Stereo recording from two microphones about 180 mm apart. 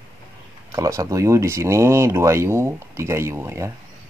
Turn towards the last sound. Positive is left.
turn(degrees=-15)  # may be behind; listen again after turning